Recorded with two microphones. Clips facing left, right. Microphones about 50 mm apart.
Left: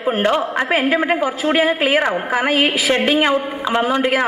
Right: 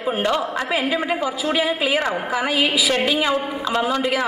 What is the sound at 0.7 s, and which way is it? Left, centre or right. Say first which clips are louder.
A woman's voice: left 6 dB; left.